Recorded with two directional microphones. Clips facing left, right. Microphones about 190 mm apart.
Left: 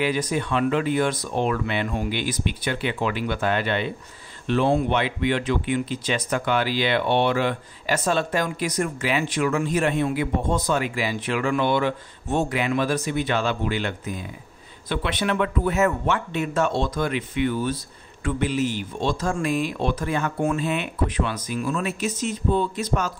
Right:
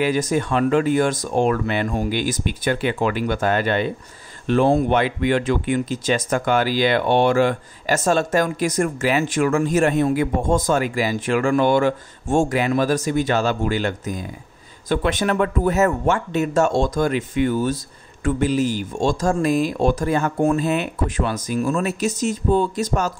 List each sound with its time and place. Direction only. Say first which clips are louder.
0.0 s speech: right 4 dB; 45° right (ahead or behind)